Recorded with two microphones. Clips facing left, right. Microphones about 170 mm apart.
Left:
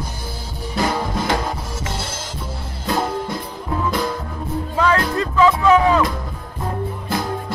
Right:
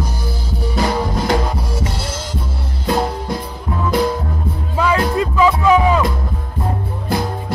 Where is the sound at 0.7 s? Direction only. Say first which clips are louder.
Right 2 dB; 50° right (ahead or behind).